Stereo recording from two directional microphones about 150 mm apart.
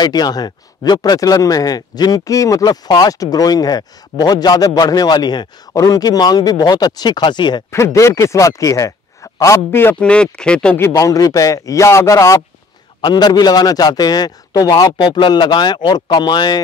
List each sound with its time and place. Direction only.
0.0 s speech: 25° left (ahead or behind)
7.7 s speech: 20° left (ahead or behind)
10.9 s speech: 25° left (ahead or behind)